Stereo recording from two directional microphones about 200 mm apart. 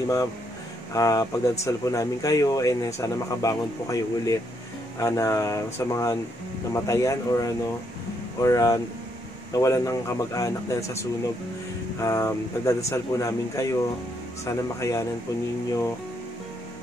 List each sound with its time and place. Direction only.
0.9 s speech: 15° left (ahead or behind)